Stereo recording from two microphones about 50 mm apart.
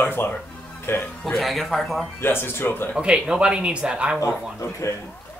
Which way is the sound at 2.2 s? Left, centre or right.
Left.